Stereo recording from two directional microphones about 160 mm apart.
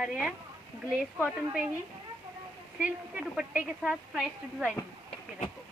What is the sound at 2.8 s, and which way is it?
A woman's voice, 10° right (ahead or behind).